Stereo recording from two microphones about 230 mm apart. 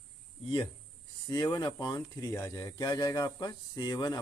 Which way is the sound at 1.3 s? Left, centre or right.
Centre.